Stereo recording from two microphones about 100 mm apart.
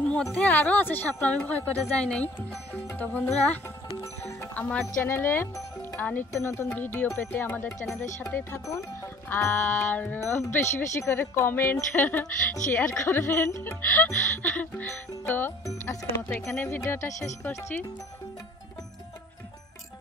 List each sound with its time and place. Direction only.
0.0 s speech: 10° left (ahead or behind)
4.6 s speech: 15° left (ahead or behind)
5.0 s speech: 25° left (ahead or behind)
6.7 s speech: 15° left (ahead or behind)
7.8 s speech: 5° left (ahead or behind)
8.3 s speech: 25° left (ahead or behind)
15.6 s speech: 30° left (ahead or behind)